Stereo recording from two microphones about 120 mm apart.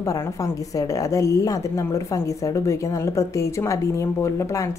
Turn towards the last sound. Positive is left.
turn(degrees=25)  # may be behind; listen again after turning